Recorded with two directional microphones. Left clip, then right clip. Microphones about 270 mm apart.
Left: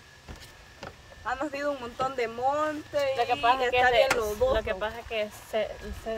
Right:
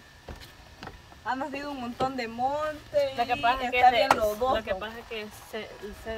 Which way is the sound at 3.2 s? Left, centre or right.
Left.